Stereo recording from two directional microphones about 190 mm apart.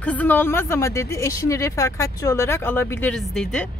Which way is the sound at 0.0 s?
10° left (ahead or behind).